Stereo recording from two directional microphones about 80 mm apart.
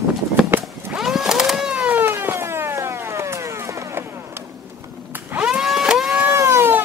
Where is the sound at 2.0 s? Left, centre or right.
Right.